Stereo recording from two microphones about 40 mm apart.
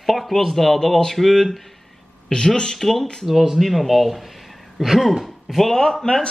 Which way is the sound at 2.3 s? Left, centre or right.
Centre.